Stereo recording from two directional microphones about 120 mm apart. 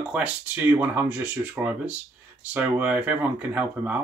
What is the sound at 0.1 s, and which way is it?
Speech, 10° right (ahead or behind).